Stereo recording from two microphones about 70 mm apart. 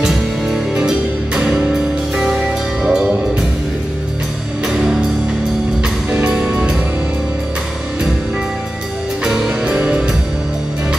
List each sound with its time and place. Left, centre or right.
0.0 s music: centre
4.6 s music: centre
9.2 s music: centre